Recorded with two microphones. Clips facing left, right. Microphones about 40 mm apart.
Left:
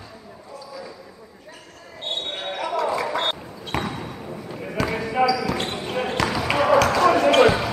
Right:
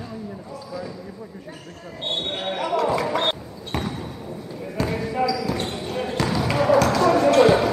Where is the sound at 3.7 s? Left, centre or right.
Left.